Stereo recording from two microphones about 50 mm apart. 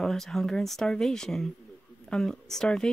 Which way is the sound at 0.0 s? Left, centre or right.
Centre.